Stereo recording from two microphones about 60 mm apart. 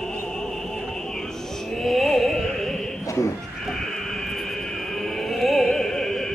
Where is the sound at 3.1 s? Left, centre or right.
Left.